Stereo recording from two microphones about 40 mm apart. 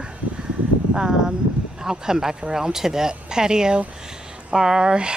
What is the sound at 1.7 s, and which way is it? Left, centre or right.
Speech, centre.